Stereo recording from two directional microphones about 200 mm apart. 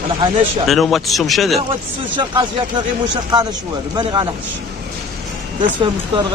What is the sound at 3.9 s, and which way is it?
Speech, 20° right (ahead or behind).